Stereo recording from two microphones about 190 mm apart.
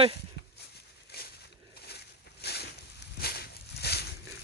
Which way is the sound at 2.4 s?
60° left (ahead or behind).